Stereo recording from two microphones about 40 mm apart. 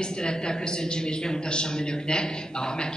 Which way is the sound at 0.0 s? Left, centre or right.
Left.